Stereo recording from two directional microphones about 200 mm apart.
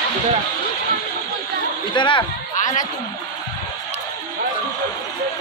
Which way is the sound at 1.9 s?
25° left (ahead or behind).